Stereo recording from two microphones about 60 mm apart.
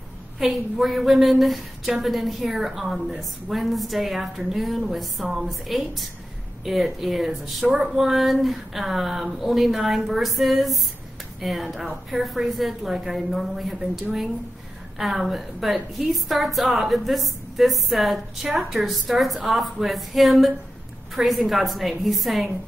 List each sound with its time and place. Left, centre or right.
0.4 s a woman's voice: centre
7.6 s speech: centre
7.9 s a woman's voice: centre
15.0 s a woman's voice: centre